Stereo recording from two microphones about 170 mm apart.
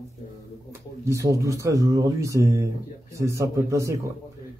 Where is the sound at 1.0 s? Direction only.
15° right (ahead or behind).